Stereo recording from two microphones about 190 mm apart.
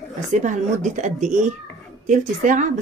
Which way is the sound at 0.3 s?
40° right (ahead or behind).